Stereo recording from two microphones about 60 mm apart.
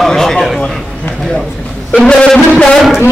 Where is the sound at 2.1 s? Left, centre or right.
Centre.